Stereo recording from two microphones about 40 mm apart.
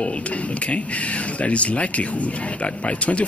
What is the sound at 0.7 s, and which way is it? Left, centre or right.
Speech, left.